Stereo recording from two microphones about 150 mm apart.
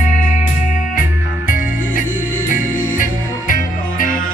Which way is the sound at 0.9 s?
65° left (ahead or behind).